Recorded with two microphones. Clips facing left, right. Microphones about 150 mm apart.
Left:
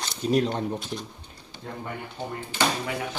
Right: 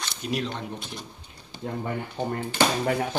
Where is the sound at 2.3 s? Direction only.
50° right (ahead or behind).